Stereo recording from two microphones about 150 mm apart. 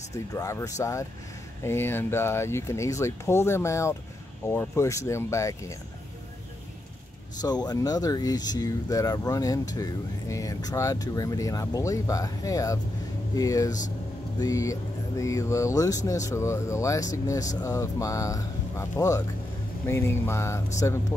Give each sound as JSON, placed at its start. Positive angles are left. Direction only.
{"t": 0.1, "sound": "speech", "side_deg": 20}
{"t": 7.4, "sound": "speech", "side_deg": 25}